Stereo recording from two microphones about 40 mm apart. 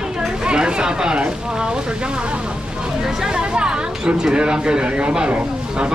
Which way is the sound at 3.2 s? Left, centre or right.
Centre.